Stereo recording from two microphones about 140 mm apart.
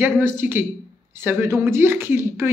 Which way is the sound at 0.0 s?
15° right (ahead or behind).